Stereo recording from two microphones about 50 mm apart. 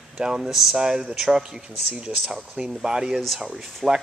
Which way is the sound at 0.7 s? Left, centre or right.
Centre.